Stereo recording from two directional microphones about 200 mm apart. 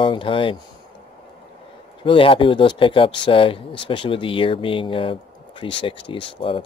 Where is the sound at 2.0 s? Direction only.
25° left (ahead or behind).